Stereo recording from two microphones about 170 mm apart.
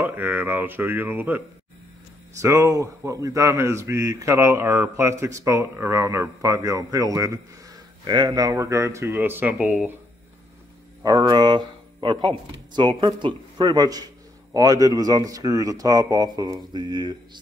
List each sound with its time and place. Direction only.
0.0 s speech: 10° right (ahead or behind)
2.4 s speech: 20° right (ahead or behind); by 9.8 s centre (ahead or behind)
11.0 s speech: 20° right (ahead or behind)